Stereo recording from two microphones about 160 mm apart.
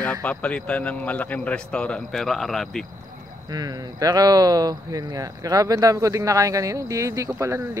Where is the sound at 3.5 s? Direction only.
25° right (ahead or behind).